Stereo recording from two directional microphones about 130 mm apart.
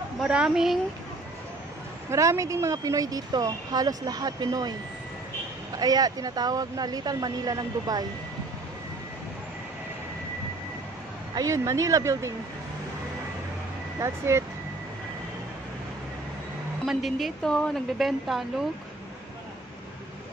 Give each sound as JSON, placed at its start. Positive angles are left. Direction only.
{"t": 0.2, "sound": "a woman's voice", "side_deg": -5}
{"t": 2.0, "sound": "speech", "side_deg": -25}
{"t": 5.8, "sound": "speech", "side_deg": -30}
{"t": 11.3, "sound": "speech", "side_deg": -25}
{"t": 13.9, "sound": "speech", "side_deg": -20}
{"t": 16.8, "sound": "a woman's voice", "side_deg": 0}